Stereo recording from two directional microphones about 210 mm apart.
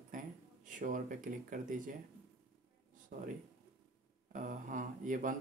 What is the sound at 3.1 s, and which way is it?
Speech, 45° right (ahead or behind).